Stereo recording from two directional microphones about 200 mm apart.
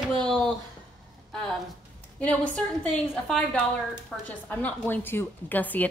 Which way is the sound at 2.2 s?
5° left (ahead or behind).